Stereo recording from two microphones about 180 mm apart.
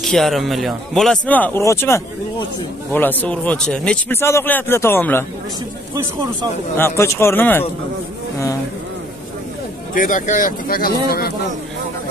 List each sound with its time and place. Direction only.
0.0 s speech: centre (ahead or behind)
6.8 s speech: 15° left (ahead or behind)
9.9 s speech: 45° left (ahead or behind)